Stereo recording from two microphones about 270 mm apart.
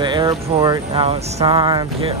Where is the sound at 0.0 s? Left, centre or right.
Centre.